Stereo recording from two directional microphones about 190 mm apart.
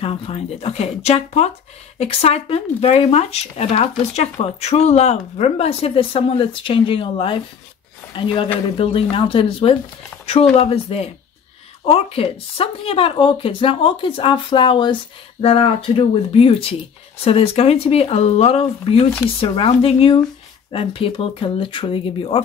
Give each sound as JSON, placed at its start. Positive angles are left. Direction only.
{"t": 0.0, "sound": "speech", "side_deg": 30}